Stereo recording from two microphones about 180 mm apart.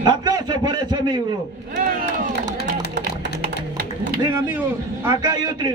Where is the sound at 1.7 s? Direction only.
50° right (ahead or behind).